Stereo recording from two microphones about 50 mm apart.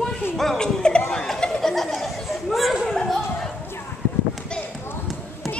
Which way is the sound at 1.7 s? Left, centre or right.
Centre.